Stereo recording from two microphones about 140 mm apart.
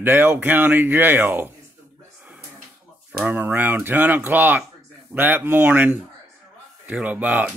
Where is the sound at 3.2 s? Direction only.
10° right (ahead or behind).